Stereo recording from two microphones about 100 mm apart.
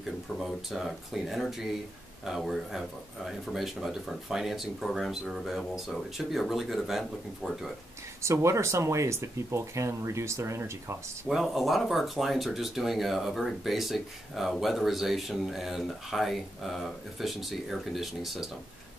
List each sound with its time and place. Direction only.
0.4 s speech: centre (ahead or behind)
8.2 s speech: 30° right (ahead or behind)
11.2 s speech: 5° right (ahead or behind)